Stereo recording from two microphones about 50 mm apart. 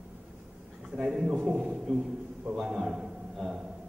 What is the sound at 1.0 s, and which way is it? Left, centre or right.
A woman's voice, centre.